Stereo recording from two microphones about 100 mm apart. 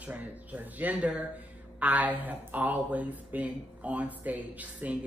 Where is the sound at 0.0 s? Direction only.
15° right (ahead or behind).